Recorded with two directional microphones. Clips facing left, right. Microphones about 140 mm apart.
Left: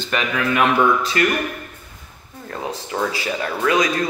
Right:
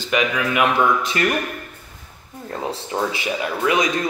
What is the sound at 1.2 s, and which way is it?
Speech, 25° right (ahead or behind).